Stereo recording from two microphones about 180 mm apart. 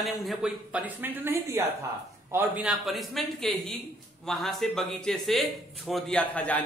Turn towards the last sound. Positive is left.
turn(degrees=10)  # may be behind; listen again after turning